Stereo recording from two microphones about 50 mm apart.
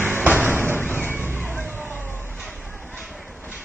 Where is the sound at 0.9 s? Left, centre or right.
Right.